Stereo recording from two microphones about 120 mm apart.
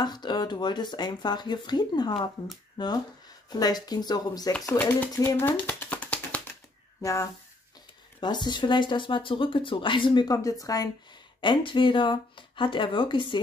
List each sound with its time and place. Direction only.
0.0 s speech: 35° left (ahead or behind)
5.4 s a sound: 15° left (ahead or behind)
7.0 s speech: 25° left (ahead or behind)
8.2 s speech: 40° left (ahead or behind)
11.4 s speech: 45° left (ahead or behind)